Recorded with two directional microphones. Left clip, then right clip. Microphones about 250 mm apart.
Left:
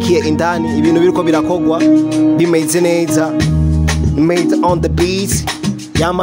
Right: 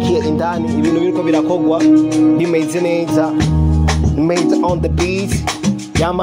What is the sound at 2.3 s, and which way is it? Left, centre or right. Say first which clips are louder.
Music: left 3 dB; left.